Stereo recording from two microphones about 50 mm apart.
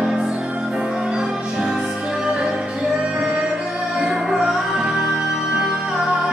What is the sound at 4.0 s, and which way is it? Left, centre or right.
Music, centre.